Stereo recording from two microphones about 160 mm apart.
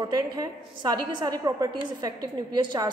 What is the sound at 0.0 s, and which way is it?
A woman's voice, 25° right (ahead or behind).